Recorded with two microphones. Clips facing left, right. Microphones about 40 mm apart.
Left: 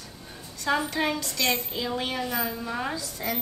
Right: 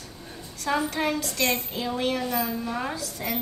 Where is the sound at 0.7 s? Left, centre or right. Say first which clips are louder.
Even; centre.